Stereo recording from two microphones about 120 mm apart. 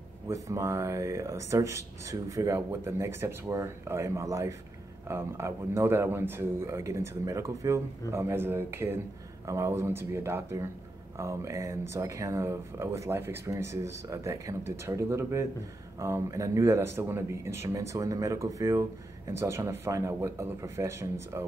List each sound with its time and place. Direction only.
0.3 s speech: 25° right (ahead or behind)